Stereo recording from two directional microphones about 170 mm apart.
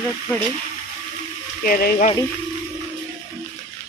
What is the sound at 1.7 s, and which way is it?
Speech, 55° left (ahead or behind).